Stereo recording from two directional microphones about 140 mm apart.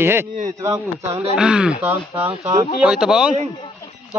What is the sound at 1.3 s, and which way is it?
Speech, 5° right (ahead or behind).